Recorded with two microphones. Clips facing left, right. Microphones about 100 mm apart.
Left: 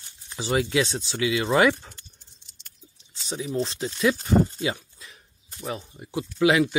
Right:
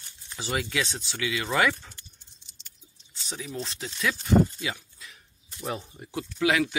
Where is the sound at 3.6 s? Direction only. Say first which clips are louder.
Left 6 dB; 25° left (ahead or behind).